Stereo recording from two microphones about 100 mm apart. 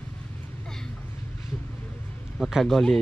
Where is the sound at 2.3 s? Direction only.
Centre (ahead or behind).